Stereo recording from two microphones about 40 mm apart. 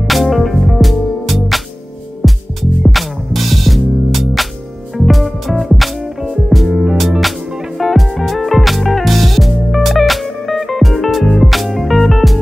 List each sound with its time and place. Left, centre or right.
0.0 s music: centre
7.0 s music: centre
7.4 s music: centre
7.7 s music: centre